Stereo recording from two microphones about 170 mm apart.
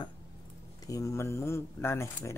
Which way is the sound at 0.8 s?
20° left (ahead or behind).